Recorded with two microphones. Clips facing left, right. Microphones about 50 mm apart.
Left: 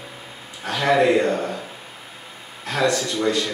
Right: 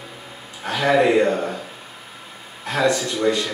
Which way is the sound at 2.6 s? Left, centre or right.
Centre.